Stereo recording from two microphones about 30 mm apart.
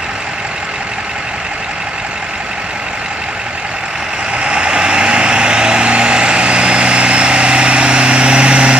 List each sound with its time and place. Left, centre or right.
4.4 s vehicle: right